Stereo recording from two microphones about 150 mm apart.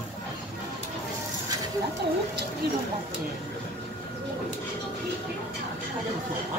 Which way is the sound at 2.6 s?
90° right.